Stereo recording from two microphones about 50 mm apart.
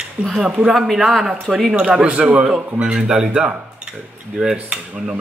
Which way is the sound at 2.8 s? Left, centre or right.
Centre.